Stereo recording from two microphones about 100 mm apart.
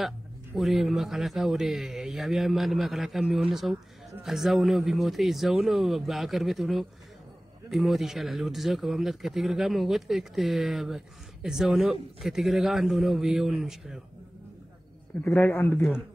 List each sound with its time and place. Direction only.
0.6 s speech: centre (ahead or behind)
15.2 s a man's voice: 20° left (ahead or behind)